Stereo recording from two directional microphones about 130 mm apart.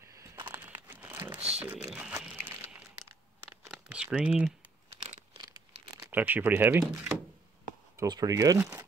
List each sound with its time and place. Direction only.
0.5 s crumpling: 15° right (ahead or behind)
3.6 s typing: 5° right (ahead or behind)
5.4 s crumpling: 30° right (ahead or behind)
6.0 s speech: 15° right (ahead or behind)
7.9 s speech: 25° right (ahead or behind)
8.5 s speech: 15° right (ahead or behind)